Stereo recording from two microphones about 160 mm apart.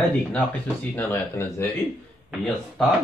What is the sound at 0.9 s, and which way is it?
Speech, 15° left (ahead or behind).